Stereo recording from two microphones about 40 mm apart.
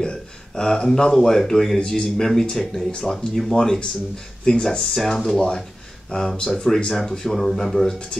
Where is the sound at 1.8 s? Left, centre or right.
Left.